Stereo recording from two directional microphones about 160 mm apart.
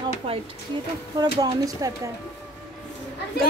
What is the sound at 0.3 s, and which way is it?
Speech, 35° right (ahead or behind).